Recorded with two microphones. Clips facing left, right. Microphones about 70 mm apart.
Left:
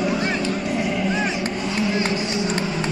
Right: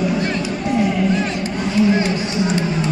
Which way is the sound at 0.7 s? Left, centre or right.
Right.